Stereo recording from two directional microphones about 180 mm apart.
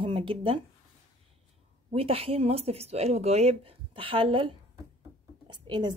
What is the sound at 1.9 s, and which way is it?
A woman's voice, 35° right (ahead or behind).